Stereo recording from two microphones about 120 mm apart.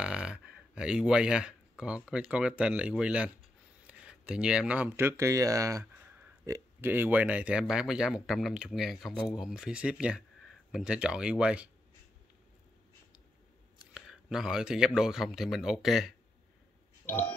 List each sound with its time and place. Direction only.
0.0 s speech: 10° right (ahead or behind)
13.9 s a man's voice: 5° right (ahead or behind)
17.0 s burping: 15° left (ahead or behind)